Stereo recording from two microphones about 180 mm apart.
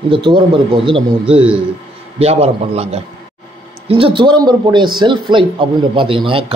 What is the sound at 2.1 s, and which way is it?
A man's voice, 35° right (ahead or behind).